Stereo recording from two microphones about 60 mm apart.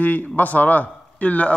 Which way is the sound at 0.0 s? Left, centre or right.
Left.